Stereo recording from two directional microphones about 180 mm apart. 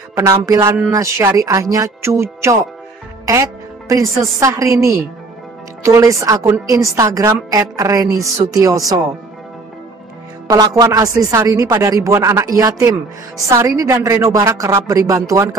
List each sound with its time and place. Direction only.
0.1 s a woman's voice: 15° right (ahead or behind)
3.9 s a woman's voice: 15° right (ahead or behind)
10.5 s a woman's voice: 20° right (ahead or behind)